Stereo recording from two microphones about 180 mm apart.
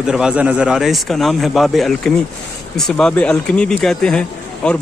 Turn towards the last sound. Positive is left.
turn(degrees=5)  # may be behind; listen again after turning